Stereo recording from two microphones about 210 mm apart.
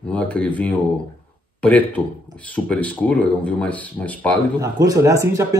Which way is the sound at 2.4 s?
5° left (ahead or behind).